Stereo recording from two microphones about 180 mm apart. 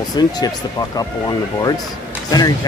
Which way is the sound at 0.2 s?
20° left (ahead or behind).